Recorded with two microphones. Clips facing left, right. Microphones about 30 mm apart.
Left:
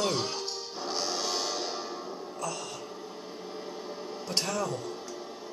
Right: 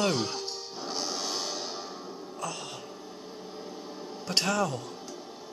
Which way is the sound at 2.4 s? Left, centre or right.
Centre.